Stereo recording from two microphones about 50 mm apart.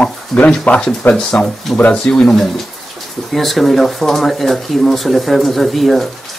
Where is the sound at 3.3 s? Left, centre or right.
Centre.